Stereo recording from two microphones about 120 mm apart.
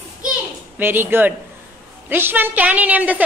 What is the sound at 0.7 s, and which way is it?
A woman's voice, 20° right (ahead or behind).